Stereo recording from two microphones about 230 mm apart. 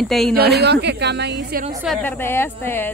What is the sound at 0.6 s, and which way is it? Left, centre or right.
Speech, right.